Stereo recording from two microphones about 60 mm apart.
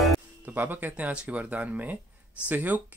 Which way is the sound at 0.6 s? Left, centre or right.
Right.